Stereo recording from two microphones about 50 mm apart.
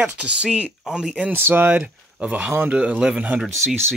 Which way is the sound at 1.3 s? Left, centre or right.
Right.